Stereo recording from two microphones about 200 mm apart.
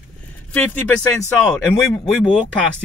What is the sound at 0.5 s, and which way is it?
Speech, 10° left (ahead or behind).